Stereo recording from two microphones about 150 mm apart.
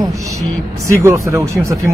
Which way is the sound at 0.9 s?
20° right (ahead or behind).